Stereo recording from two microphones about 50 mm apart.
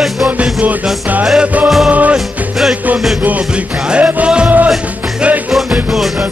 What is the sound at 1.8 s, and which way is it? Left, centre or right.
Music, right.